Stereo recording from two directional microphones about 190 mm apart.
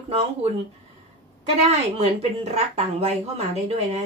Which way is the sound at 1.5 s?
30° right (ahead or behind).